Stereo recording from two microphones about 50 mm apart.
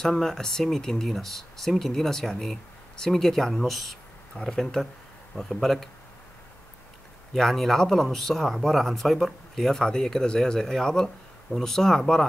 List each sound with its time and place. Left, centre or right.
0.0 s speech: centre
7.3 s speech: centre